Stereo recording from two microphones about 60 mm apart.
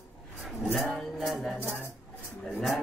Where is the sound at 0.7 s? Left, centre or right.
Centre.